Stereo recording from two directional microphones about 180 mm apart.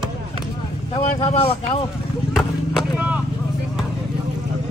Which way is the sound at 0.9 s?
30° left (ahead or behind).